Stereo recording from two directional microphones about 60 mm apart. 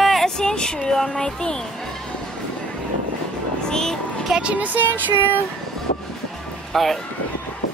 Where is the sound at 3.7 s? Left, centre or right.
Centre.